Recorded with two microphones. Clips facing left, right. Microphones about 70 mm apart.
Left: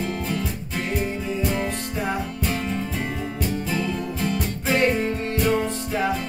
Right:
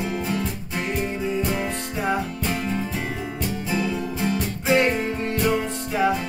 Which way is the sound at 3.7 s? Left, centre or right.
Centre.